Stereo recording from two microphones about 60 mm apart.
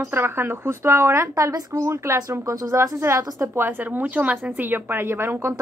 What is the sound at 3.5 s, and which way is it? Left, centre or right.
Speech, right.